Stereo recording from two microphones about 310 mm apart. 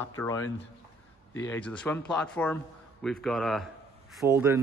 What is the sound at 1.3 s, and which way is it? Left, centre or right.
Speech, left.